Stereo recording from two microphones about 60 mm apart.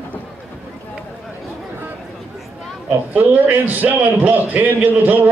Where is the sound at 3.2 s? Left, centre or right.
Right.